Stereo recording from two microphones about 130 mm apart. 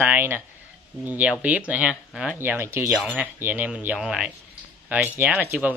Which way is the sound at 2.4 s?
15° right (ahead or behind).